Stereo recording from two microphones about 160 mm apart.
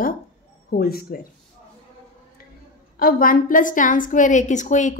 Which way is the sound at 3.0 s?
65° left (ahead or behind).